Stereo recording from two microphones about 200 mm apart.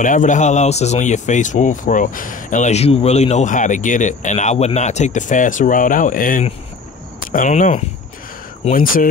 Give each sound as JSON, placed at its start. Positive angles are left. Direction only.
{"t": 0.0, "sound": "speech", "side_deg": 40}